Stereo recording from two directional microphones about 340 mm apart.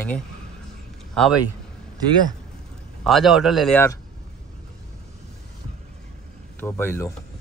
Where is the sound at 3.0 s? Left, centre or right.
Centre.